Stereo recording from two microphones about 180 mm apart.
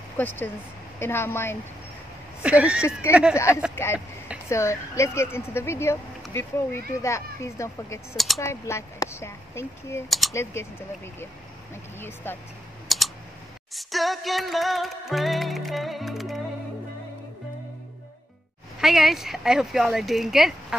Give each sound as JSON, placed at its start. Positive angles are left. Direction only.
{"t": 0.2, "sound": "speech", "side_deg": 10}
{"t": 2.4, "sound": "speech", "side_deg": -5}
{"t": 3.7, "sound": "speech", "side_deg": 15}
{"t": 10.0, "sound": "speech", "side_deg": 0}
{"t": 10.3, "sound": "speech", "side_deg": 15}
{"t": 12.2, "sound": "speech", "side_deg": 10}
{"t": 12.8, "sound": "typing", "side_deg": 0}
{"t": 13.7, "sound": "music", "side_deg": 0}
{"t": 18.8, "sound": "speech", "side_deg": 0}